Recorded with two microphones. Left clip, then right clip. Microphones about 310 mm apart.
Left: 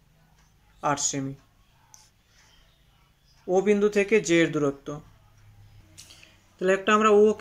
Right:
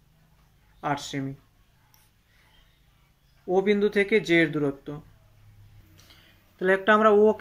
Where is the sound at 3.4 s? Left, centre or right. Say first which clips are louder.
Left 1 dB; centre.